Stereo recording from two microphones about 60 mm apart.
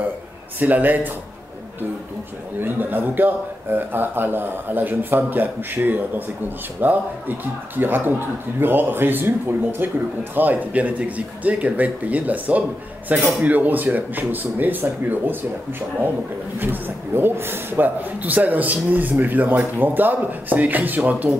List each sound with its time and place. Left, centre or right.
0.6 s speech: right
2.6 s speech: right
16.5 s speech: right